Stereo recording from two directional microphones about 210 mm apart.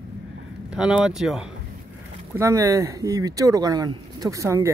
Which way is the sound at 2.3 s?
15° right (ahead or behind).